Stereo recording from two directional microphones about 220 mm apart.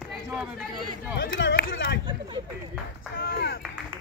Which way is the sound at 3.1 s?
45° left (ahead or behind).